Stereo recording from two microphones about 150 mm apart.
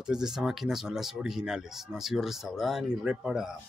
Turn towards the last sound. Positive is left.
turn(degrees=-5)  # may be behind; listen again after turning